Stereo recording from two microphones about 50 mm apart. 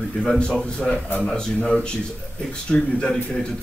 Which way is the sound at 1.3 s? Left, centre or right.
Centre.